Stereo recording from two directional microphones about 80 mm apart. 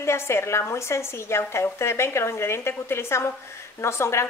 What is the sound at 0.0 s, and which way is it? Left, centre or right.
A woman's voice, left.